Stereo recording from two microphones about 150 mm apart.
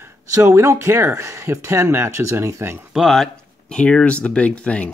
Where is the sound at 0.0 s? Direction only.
20° right (ahead or behind).